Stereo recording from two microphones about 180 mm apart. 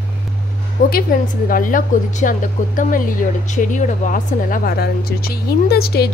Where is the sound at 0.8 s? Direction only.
50° left (ahead or behind).